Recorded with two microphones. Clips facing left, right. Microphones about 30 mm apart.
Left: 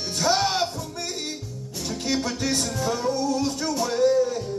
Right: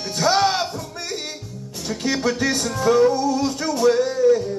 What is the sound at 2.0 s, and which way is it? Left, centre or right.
Music, right.